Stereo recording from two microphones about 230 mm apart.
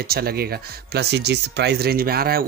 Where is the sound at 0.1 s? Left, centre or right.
Right.